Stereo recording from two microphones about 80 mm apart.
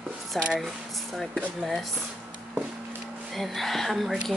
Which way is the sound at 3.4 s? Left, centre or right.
Centre.